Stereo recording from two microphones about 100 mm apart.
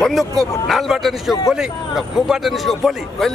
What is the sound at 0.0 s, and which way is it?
A man's voice, 5° left (ahead or behind).